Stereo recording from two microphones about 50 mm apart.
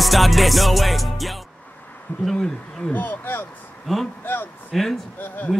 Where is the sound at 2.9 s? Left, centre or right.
Left.